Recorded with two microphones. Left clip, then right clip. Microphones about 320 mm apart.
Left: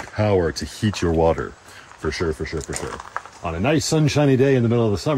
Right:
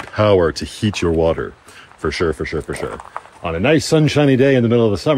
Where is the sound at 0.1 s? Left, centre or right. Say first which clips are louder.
Right 6 dB; centre.